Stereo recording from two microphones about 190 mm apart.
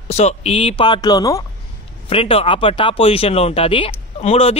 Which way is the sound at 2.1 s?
30° left (ahead or behind).